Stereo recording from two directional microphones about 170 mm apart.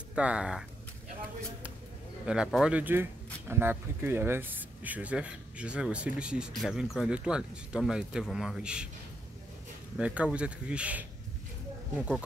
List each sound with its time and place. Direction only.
0.1 s speech: 5° right (ahead or behind)
2.2 s speech: 5° right (ahead or behind)
9.9 s speech: 5° right (ahead or behind)